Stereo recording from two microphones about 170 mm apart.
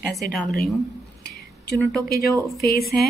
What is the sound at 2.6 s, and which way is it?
Speech, 65° left (ahead or behind).